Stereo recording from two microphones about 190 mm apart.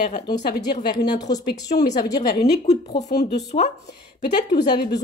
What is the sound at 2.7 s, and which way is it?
Speech, 35° left (ahead or behind).